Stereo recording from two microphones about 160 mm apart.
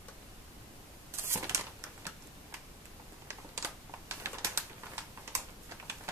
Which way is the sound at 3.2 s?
15° right (ahead or behind).